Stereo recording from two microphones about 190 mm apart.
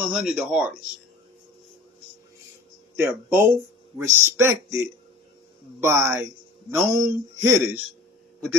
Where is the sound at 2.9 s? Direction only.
10° right (ahead or behind).